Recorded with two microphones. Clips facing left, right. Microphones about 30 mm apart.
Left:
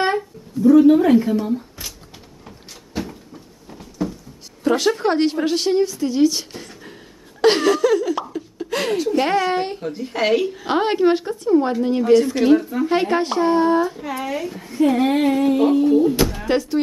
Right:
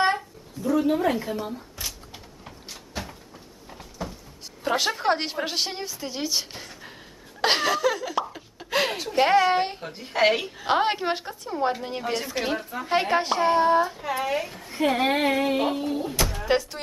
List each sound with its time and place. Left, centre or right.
0.7 s speech: centre
2.9 s cupboard open or close: centre
4.0 s a sound: centre
4.6 s a woman's voice: centre
14.7 s a woman's voice: right
15.0 s a sound: centre
15.6 s a woman's voice: centre
16.2 s speech: centre